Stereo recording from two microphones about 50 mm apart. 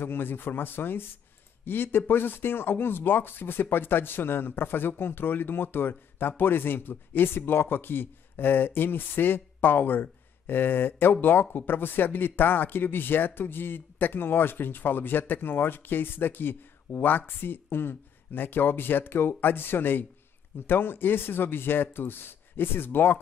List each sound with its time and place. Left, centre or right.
0.0 s a man's voice: left